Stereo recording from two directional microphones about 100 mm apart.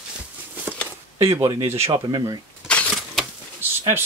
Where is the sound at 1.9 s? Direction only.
45° right (ahead or behind).